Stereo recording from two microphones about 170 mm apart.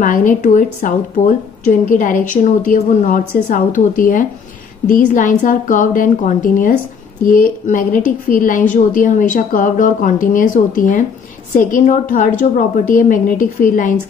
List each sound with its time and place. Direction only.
0.0 s a woman's voice: 50° left (ahead or behind)